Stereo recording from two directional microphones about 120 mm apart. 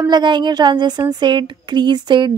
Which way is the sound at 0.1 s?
40° right (ahead or behind).